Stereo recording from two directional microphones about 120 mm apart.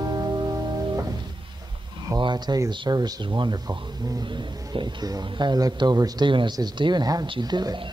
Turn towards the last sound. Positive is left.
turn(degrees=-35)  # may be behind; listen again after turning